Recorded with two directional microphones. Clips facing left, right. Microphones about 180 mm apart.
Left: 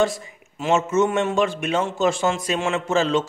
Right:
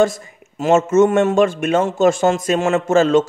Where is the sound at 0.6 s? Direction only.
45° right (ahead or behind).